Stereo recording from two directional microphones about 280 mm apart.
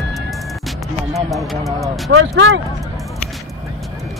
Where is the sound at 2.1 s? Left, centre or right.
Right.